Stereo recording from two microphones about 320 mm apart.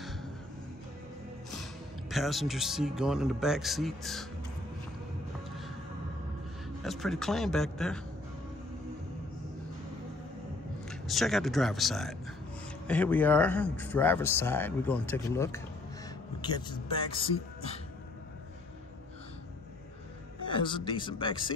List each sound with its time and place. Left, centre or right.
1.5 s speech: centre
6.8 s speech: centre
10.9 s speech: centre
20.4 s a man's voice: centre